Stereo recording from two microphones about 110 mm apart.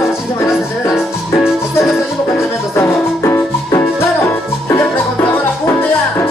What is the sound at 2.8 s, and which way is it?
Music, 20° left (ahead or behind).